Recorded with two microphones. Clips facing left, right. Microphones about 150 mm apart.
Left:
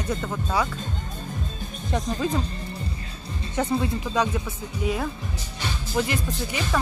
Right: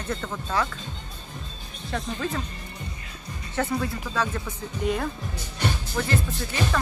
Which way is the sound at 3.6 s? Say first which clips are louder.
Left 2 dB; 20° left (ahead or behind).